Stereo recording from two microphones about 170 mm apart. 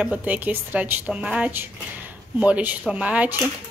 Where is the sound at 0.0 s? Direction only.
10° right (ahead or behind).